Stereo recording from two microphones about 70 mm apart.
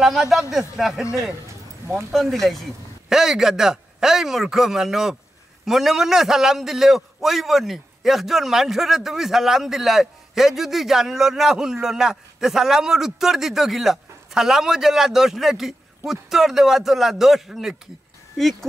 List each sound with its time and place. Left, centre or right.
0.0 s a man's voice: centre
1.9 s speech: right
2.1 s a man's voice: centre